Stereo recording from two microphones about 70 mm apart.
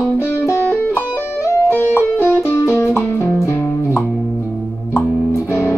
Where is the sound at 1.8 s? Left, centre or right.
Left.